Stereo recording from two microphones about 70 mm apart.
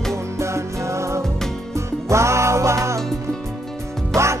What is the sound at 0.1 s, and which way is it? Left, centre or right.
Music, right.